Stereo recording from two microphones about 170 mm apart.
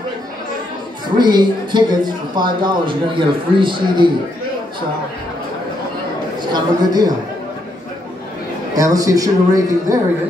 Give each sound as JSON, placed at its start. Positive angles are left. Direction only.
{"t": 1.1, "sound": "a man's voice", "side_deg": -25}
{"t": 6.5, "sound": "a man's voice", "side_deg": -25}
{"t": 8.7, "sound": "a man's voice", "side_deg": -20}